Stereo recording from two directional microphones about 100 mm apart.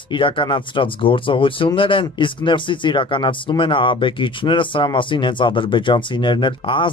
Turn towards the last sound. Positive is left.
turn(degrees=55)  # may be behind; listen again after turning